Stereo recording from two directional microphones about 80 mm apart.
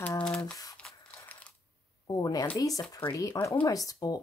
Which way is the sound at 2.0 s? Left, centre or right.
Left.